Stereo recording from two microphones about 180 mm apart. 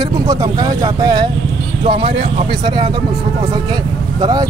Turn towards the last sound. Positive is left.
turn(degrees=-20)  # may be behind; listen again after turning